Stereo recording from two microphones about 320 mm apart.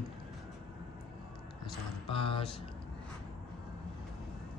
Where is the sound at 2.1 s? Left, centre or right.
Centre.